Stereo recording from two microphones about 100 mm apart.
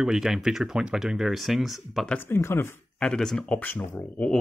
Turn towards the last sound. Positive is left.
turn(degrees=20)  # may be behind; listen again after turning